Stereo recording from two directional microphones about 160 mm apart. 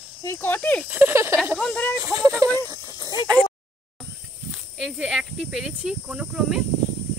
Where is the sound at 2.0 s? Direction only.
20° right (ahead or behind).